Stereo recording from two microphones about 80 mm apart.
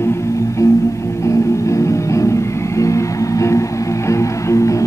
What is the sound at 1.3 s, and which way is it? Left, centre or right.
Music, left.